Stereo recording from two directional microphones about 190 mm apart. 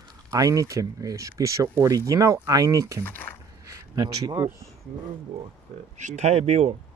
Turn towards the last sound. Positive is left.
turn(degrees=-35)  # may be behind; listen again after turning